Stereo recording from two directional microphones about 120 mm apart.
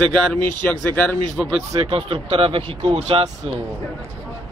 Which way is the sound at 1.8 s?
50° right (ahead or behind).